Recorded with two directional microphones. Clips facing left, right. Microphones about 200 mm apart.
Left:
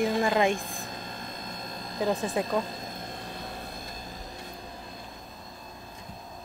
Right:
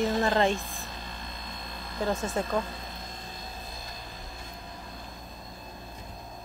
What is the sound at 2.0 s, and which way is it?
Speech, 15° left (ahead or behind).